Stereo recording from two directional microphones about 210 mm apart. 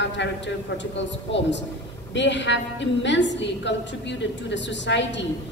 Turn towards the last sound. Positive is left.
turn(degrees=60)  # may be behind; listen again after turning